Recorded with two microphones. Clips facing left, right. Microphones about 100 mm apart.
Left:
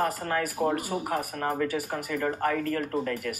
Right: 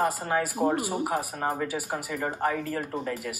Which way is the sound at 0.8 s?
70° right (ahead or behind).